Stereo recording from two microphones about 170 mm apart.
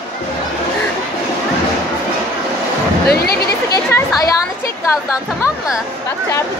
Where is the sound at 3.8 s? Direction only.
15° left (ahead or behind).